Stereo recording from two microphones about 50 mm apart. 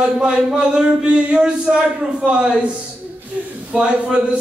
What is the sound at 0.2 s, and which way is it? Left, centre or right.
Speech, centre.